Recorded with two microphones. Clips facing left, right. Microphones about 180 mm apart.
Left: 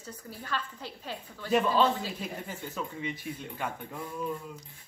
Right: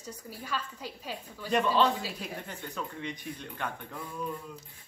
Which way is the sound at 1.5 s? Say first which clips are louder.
Left 1 dB; 5° left (ahead or behind).